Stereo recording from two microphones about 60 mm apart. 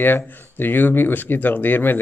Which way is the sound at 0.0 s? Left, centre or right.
Left.